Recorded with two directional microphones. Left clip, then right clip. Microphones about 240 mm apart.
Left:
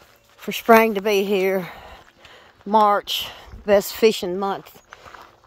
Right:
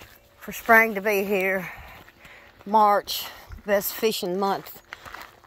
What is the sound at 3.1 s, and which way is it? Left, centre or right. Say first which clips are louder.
Speech: left 6 dB; centre.